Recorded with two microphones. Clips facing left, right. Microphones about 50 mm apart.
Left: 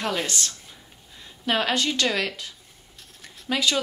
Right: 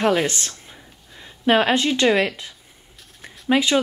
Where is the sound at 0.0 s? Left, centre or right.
Right.